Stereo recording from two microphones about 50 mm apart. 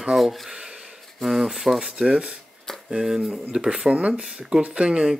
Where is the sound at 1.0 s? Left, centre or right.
Centre.